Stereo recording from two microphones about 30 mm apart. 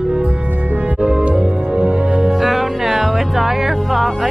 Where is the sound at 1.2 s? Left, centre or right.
Right.